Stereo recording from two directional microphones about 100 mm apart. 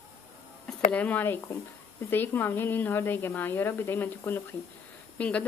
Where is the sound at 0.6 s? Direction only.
15° left (ahead or behind).